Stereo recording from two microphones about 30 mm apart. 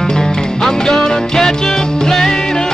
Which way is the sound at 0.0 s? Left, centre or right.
Left.